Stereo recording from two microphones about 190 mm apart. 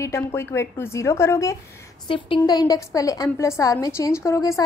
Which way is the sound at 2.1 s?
25° left (ahead or behind).